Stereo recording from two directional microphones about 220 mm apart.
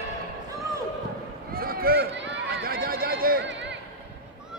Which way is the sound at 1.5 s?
40° right (ahead or behind).